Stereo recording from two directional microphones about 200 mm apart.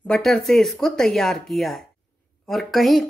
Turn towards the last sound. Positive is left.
turn(degrees=0)  # may be behind; listen again after turning